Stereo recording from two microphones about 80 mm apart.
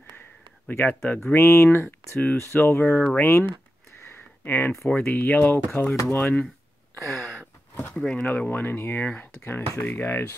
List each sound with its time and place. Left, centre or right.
0.7 s speech: left
2.7 s speech: centre
3.2 s speech: left
4.8 s speech: centre
5.1 s speech: left
5.9 s speech: left
7.2 s a sound: centre
7.9 s speech: centre
8.3 s speech: centre